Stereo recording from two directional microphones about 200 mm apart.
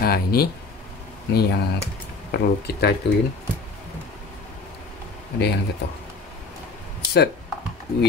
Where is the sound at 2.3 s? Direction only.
55° left (ahead or behind).